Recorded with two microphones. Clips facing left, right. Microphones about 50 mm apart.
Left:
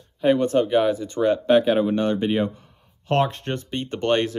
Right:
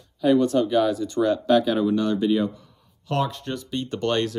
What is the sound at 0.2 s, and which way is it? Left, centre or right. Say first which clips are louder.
Speech: even; left.